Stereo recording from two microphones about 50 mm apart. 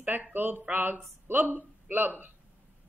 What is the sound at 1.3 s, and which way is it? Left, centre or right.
Speech, right.